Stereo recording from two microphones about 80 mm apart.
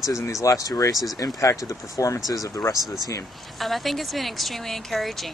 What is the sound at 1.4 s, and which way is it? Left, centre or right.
Speech, left.